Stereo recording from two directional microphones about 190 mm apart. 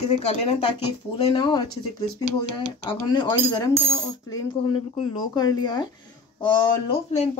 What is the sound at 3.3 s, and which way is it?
Speech, 20° left (ahead or behind).